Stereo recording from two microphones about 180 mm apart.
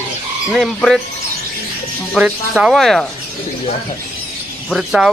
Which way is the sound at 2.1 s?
5° right (ahead or behind).